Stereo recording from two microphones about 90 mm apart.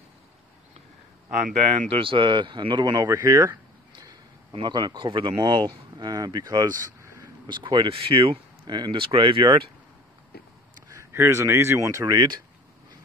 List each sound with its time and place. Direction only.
1.9 s speech: 85° right; by 3.1 s 55° right (ahead or behind)
3.1 s a sound: 40° right (ahead or behind)
4.5 s speech: 60° right (ahead or behind)
5.4 s speech: 55° right (ahead or behind)
7.0 s a sound: 30° right (ahead or behind)
7.4 s speech: 60° right (ahead or behind)
10.9 s speech: 30° right (ahead or behind)